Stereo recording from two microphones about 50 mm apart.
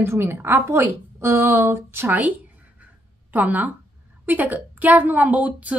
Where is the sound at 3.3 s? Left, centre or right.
Right.